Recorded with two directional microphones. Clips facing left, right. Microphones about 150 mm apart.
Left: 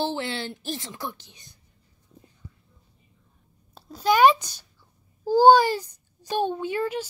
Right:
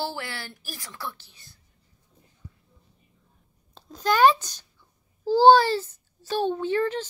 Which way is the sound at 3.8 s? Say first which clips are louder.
Left 2 dB; 10° left (ahead or behind).